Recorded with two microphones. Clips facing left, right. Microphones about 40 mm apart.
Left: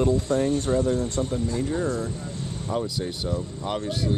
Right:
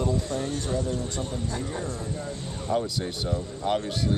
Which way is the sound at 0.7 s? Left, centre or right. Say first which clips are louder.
Left 6 dB; left.